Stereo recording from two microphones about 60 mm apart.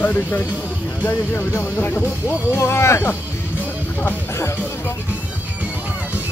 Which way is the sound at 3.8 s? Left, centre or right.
Left.